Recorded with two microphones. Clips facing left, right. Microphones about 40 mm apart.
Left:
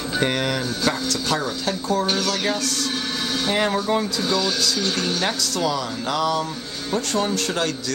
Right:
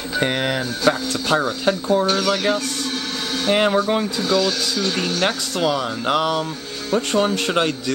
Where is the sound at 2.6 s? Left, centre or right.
Right.